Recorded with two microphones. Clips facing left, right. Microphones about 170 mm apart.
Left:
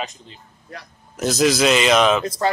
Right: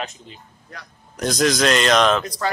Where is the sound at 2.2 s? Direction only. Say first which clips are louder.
Left 4 dB; 25° left (ahead or behind).